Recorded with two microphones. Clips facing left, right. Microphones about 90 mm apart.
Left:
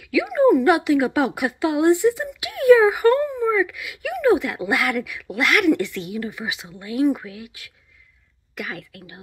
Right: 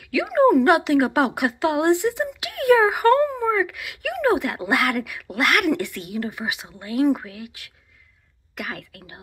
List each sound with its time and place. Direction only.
0.0 s a sound: 45° right (ahead or behind)
0.7 s a woman's voice: 55° right (ahead or behind)
8.5 s speech: 50° right (ahead or behind)